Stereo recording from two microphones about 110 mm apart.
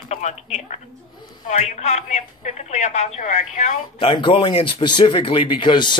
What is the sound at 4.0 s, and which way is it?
Speech, 50° left (ahead or behind).